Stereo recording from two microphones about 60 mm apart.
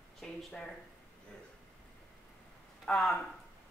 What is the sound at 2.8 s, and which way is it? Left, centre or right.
Speech, centre.